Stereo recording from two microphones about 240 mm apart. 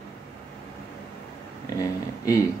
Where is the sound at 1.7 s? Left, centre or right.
Centre.